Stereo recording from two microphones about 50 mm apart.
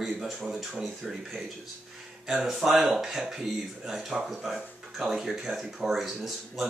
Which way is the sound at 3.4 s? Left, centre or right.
Centre.